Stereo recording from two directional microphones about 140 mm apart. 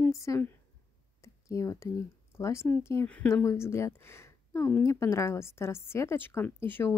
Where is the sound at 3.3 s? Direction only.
20° left (ahead or behind).